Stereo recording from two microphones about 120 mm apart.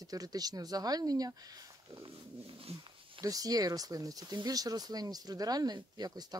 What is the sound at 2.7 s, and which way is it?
Speech, 55° right (ahead or behind).